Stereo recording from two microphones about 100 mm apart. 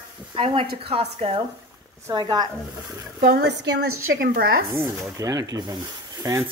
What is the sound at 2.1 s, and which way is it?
Speech, 45° right (ahead or behind).